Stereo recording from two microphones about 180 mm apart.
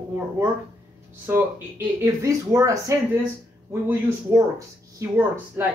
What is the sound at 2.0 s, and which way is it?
Speech, 15° right (ahead or behind).